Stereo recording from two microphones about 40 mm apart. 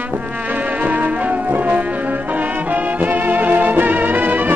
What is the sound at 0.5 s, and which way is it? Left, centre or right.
Music, right.